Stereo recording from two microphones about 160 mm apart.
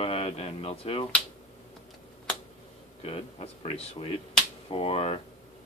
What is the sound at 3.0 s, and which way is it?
Speech, 35° left (ahead or behind).